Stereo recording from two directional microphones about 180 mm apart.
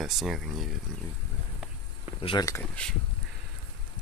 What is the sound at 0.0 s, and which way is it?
Speech, centre (ahead or behind).